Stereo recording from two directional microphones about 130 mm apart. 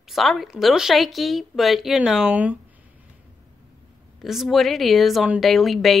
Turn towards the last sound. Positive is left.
turn(degrees=0)  # may be behind; listen again after turning